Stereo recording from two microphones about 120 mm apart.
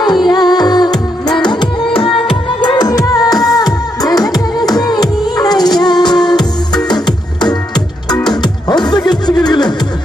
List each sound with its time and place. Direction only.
0.0 s music: 35° left (ahead or behind)